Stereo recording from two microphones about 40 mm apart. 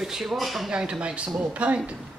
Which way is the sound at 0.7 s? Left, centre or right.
Right.